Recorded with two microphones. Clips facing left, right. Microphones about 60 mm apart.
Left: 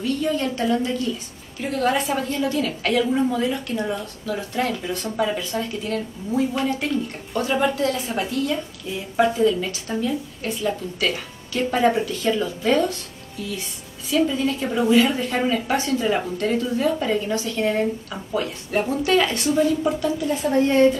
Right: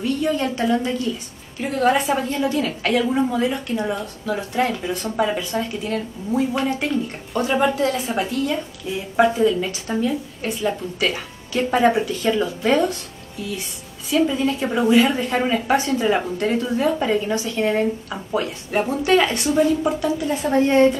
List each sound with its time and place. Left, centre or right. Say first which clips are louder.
0.0 s a woman's voice: right 2 dB; centre
9.2 s speech: right 2 dB; centre
14.1 s a woman's voice: right 2 dB; centre